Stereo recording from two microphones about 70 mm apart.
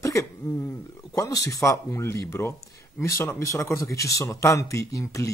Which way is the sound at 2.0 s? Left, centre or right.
Left.